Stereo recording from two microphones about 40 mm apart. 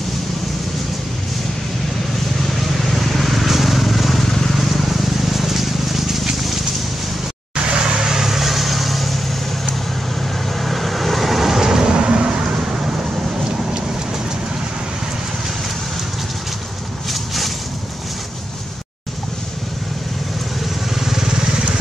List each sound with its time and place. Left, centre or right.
2.9 s vehicle: centre
4.6 s a sound: centre
7.5 s vehicle: right; by 9.2 s centre
10.6 s vehicle: centre
11.9 s vehicle: right
20.9 s vehicle: centre